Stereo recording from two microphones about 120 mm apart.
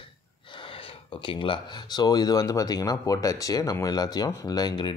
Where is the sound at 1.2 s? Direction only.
45° left (ahead or behind).